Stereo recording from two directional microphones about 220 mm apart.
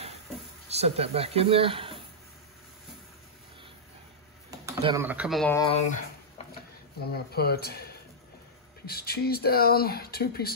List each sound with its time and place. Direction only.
0.7 s speech: 30° right (ahead or behind)
4.5 s speech: 15° right (ahead or behind)
5.7 s a sound: 30° left (ahead or behind)
7.1 s speech: 45° left (ahead or behind)